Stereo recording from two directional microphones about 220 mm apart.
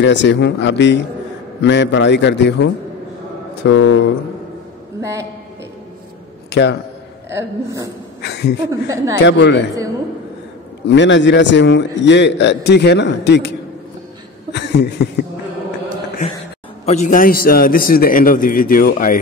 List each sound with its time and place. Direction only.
0.0 s a man's voice: 55° left (ahead or behind)
3.7 s speech: 55° left (ahead or behind)
6.5 s a man's voice: 50° left (ahead or behind)
7.2 s a woman's voice: 15° right (ahead or behind)
8.2 s a sound: 50° left (ahead or behind)
8.6 s a woman's voice: 15° right (ahead or behind)
9.2 s a man's voice: 50° left (ahead or behind)
10.9 s a man's voice: 55° left (ahead or behind)
16.8 s a man's voice: 35° left (ahead or behind)